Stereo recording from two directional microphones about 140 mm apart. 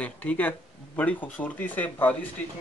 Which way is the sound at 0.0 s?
10° left (ahead or behind).